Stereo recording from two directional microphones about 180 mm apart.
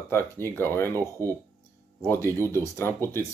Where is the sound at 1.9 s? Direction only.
15° left (ahead or behind).